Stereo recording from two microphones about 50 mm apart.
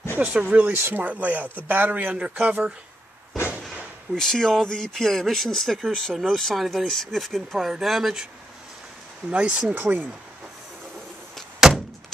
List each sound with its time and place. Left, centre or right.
0.3 s speech: right
0.9 s speech: right
2.1 s speech: right
3.3 s a sound: left
4.1 s speech: centre
9.3 s speech: right
9.8 s speech: right